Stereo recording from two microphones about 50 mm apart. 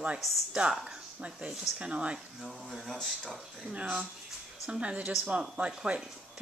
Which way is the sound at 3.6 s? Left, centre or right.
Right.